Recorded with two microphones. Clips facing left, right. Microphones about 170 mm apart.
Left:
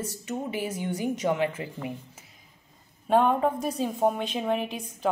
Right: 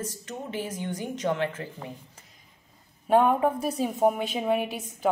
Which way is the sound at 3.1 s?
5° right (ahead or behind).